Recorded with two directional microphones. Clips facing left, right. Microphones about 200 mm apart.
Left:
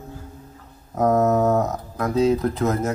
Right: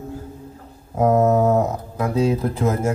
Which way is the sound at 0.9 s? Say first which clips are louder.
Right 2 dB; 10° right (ahead or behind).